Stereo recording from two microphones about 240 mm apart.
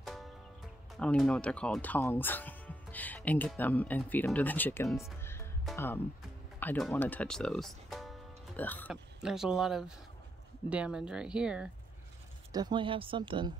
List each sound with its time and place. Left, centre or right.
0.0 s music: centre
0.9 s speech: centre
5.2 s music: centre
6.6 s speech: centre
12.5 s speech: centre